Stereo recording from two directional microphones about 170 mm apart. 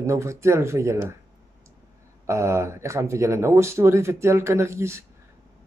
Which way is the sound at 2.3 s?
15° right (ahead or behind).